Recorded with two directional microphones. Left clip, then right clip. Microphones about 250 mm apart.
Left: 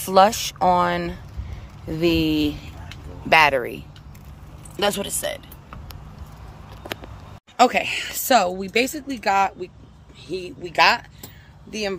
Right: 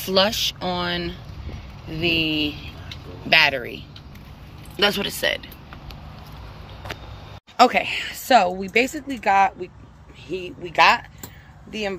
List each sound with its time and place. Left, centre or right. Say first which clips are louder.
0.1 s speech: left 4 dB; centre
7.5 s speech: right 1 dB; centre